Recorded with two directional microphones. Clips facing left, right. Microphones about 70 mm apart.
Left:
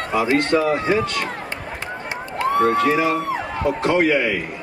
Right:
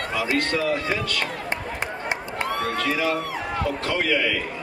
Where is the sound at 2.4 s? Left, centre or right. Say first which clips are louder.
Left 10 dB; left.